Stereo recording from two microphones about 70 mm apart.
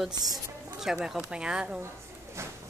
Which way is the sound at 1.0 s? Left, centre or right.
Centre.